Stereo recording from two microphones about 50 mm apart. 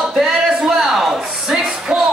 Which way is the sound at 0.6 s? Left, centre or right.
Centre.